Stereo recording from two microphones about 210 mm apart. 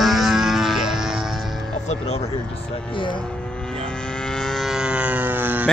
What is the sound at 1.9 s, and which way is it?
Speech, 30° left (ahead or behind).